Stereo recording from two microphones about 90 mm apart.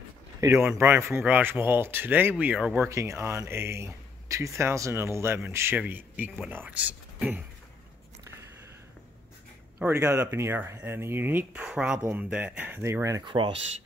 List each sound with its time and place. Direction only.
0.6 s speech: 20° right (ahead or behind)
2.9 s speech: 30° right (ahead or behind)
9.9 s speech: 30° right (ahead or behind)
11.6 s speech: 10° right (ahead or behind)
12.8 s speech: 35° right (ahead or behind)
13.2 s speech: 65° right (ahead or behind)